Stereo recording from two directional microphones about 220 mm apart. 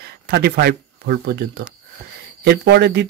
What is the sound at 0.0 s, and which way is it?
Speech, 45° right (ahead or behind).